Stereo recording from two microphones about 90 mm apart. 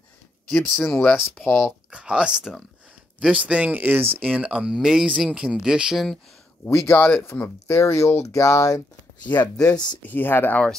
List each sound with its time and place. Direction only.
0.7 s speech: 30° left (ahead or behind)
1.9 s speech: 10° right (ahead or behind)
6.6 s speech: 25° left (ahead or behind)
9.3 s speech: 50° left (ahead or behind)
10.0 s speech: 20° left (ahead or behind)